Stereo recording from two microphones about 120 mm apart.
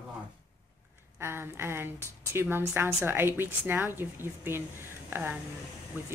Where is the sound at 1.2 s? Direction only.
20° right (ahead or behind).